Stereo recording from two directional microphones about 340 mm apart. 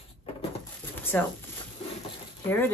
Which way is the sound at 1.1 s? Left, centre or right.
Centre.